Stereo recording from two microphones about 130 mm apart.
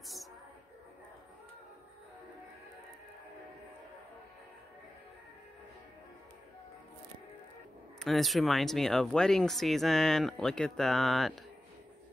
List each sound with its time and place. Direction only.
8.0 s speech: centre (ahead or behind)